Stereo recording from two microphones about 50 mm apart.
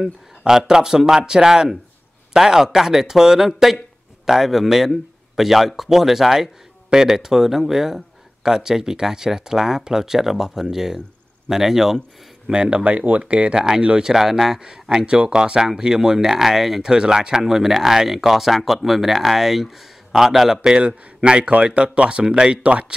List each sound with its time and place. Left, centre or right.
0.4 s a man's voice: centre
12.8 s speech: right